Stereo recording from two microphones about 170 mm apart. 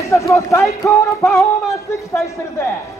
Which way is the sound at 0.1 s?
20° left (ahead or behind).